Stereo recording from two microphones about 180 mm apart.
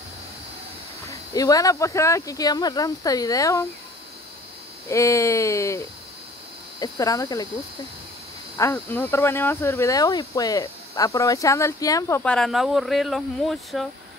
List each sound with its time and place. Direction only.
1.3 s speech: 20° left (ahead or behind)
4.8 s speech: 15° left (ahead or behind)
8.5 s speech: 10° left (ahead or behind)